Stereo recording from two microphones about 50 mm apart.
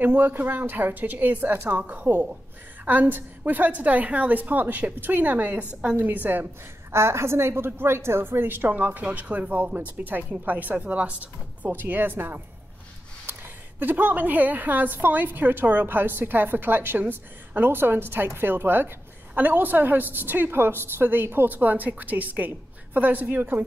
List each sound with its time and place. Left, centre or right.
0.0 s a woman's voice: right
6.9 s a woman's voice: right
11.7 s a woman's voice: right